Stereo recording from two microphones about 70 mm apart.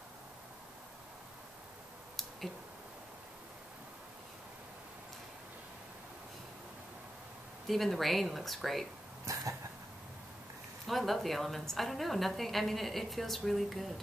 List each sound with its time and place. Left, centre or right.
7.6 s a woman's voice: centre
9.2 s cough: right
10.9 s a woman's voice: centre